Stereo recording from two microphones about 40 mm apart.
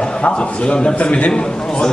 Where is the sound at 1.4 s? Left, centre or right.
Centre.